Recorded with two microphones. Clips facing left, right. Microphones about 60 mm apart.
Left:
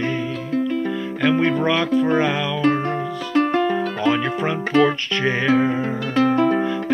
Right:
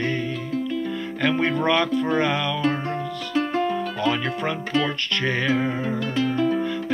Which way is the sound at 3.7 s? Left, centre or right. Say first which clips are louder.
Left 4 dB; centre.